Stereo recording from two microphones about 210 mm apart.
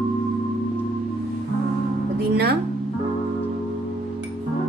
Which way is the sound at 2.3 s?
50° right (ahead or behind).